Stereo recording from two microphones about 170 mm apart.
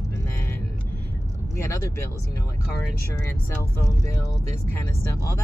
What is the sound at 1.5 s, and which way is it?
Speech, 20° left (ahead or behind).